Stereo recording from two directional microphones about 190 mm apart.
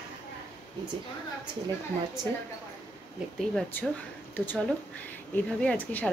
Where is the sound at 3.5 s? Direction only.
5° left (ahead or behind).